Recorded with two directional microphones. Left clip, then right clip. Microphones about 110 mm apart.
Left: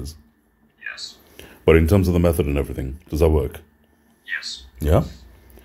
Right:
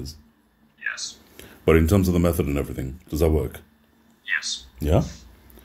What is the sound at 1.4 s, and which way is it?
Speech, 50° left (ahead or behind).